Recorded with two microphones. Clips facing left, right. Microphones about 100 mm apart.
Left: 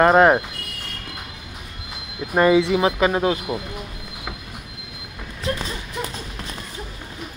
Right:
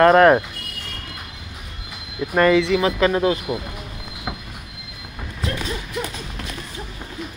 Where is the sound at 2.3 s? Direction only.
15° left (ahead or behind).